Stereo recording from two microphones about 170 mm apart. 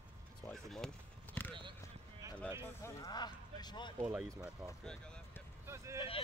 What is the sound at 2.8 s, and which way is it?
Speech, 20° left (ahead or behind).